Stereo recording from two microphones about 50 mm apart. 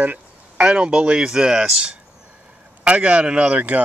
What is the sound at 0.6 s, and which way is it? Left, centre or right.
Speech, centre.